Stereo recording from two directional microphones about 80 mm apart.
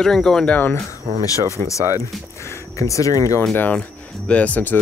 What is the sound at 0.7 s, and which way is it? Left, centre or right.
Speech, left.